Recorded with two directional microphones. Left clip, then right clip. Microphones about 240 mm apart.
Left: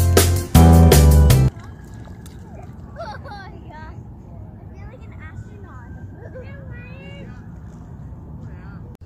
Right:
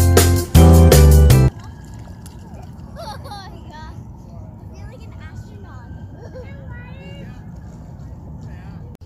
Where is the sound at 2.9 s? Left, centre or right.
Right.